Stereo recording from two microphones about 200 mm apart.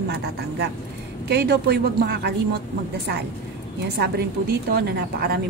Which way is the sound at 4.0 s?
50° right (ahead or behind).